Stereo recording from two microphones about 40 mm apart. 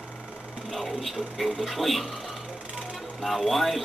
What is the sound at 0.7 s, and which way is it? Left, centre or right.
Speech, centre.